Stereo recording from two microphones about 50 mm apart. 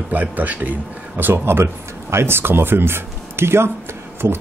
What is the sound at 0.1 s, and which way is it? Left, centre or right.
Speech, right.